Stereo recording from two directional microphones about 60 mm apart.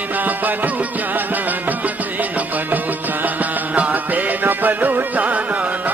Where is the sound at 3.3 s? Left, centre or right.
Right.